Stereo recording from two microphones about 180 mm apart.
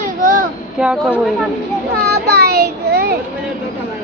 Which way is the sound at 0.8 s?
Centre (ahead or behind).